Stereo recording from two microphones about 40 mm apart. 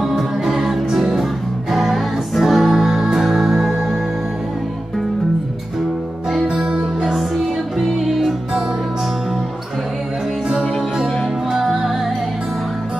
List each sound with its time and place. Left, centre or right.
0.0 s music: centre
6.4 s music: centre
7.2 s music: centre
11.6 s music: centre